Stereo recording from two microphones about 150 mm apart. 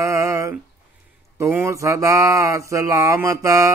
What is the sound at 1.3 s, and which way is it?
Speech, 15° right (ahead or behind).